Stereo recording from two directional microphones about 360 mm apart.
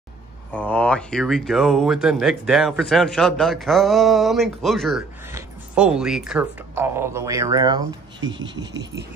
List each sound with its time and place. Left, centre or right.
0.5 s speech: centre
8.2 s speech: right